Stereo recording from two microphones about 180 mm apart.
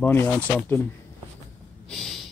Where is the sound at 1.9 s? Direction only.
Centre (ahead or behind).